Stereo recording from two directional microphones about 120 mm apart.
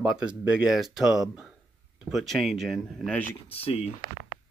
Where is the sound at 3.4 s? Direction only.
55° left (ahead or behind).